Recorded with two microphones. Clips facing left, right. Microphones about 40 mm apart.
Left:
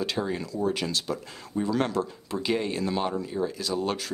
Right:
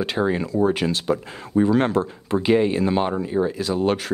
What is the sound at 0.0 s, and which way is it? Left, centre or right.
Speech, right.